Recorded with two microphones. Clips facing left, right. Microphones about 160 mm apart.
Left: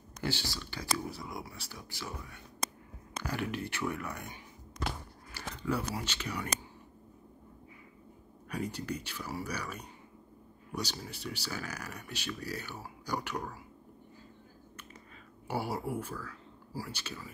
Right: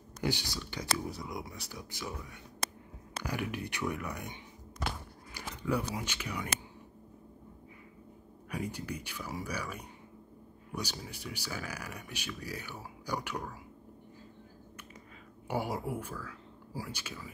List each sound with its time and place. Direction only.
0.2 s speech: 15° right (ahead or behind)
8.5 s speech: 10° right (ahead or behind)
15.4 s speech: 15° right (ahead or behind)